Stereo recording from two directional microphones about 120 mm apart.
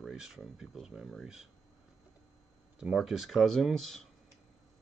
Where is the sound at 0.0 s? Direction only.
5° right (ahead or behind).